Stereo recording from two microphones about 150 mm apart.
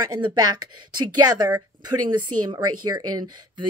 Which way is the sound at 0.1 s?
30° right (ahead or behind).